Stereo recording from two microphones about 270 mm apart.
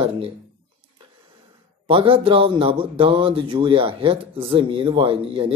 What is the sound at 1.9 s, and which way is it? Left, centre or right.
A man's voice, centre.